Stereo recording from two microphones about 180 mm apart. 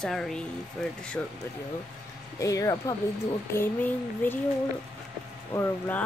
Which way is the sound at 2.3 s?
20° left (ahead or behind).